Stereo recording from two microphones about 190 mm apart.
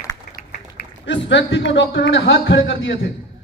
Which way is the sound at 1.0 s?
70° left (ahead or behind).